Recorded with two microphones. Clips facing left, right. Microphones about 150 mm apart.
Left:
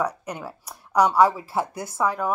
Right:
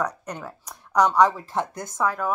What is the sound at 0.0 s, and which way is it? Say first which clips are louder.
Speech: left 1 dB; 10° left (ahead or behind).